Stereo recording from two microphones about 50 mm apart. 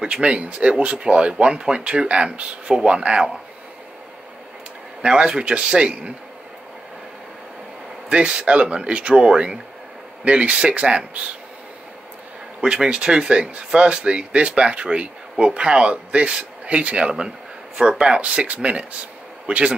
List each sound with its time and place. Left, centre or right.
0.0 s speech: centre
5.0 s speech: centre
8.1 s speech: right
12.5 s a man's voice: centre